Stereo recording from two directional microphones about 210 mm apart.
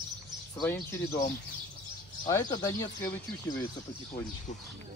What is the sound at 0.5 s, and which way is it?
Speech, 10° left (ahead or behind).